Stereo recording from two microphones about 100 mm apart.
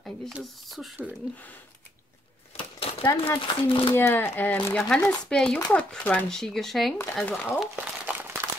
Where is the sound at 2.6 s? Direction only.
70° left (ahead or behind).